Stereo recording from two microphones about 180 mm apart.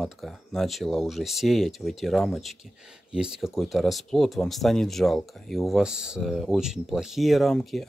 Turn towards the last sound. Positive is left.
turn(degrees=0)  # may be behind; listen again after turning